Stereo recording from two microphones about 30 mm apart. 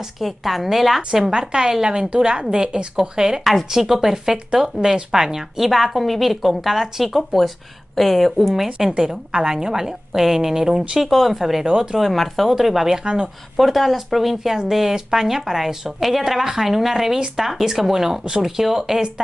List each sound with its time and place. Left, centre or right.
0.2 s speech: centre
1.5 s a woman's voice: right
5.7 s speech: centre
8.9 s a woman's voice: right
11.1 s speech: centre
11.6 s a woman's voice: right
12.0 s speech: centre
13.0 s a woman's voice: right
13.6 s speech: centre
16.0 s speech: centre
16.3 s speech: centre